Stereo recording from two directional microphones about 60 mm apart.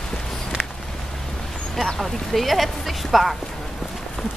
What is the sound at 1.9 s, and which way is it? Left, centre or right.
Speech, centre.